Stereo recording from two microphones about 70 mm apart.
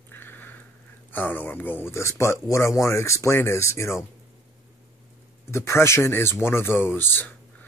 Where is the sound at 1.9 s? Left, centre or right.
Left.